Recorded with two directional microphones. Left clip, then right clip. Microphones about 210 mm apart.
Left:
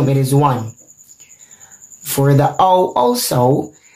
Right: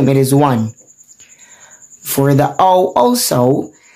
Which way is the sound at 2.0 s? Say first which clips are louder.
Right 1 dB; 25° right (ahead or behind).